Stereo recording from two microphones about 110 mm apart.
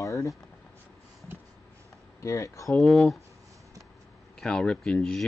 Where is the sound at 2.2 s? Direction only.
30° left (ahead or behind).